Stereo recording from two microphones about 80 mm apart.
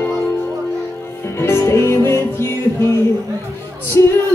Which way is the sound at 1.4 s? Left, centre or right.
Left.